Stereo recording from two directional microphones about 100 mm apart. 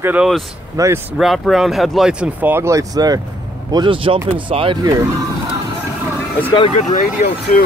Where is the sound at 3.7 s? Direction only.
55° right (ahead or behind).